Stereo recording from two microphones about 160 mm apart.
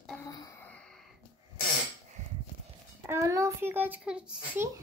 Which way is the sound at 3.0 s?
15° right (ahead or behind).